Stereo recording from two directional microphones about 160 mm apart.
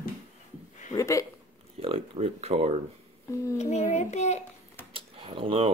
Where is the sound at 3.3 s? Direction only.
20° left (ahead or behind).